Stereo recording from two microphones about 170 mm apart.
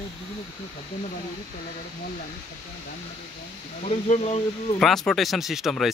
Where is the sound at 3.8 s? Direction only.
40° left (ahead or behind).